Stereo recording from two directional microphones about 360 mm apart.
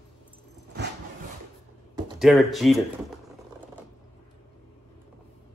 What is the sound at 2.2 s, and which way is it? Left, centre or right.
Speech, centre.